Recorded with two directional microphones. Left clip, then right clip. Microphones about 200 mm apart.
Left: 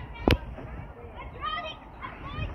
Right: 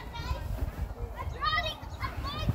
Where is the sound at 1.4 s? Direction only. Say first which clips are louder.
Right 3 dB; 5° right (ahead or behind).